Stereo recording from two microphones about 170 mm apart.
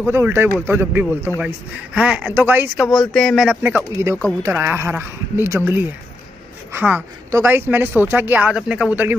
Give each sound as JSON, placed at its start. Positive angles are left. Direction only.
{"t": 0.0, "sound": "a woman's voice", "side_deg": -15}
{"t": 2.9, "sound": "speech", "side_deg": 0}
{"t": 3.6, "sound": "a woman's voice", "side_deg": -15}